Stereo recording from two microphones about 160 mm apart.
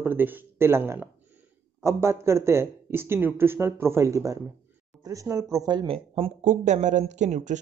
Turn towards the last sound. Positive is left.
turn(degrees=-50)  # may be behind; listen again after turning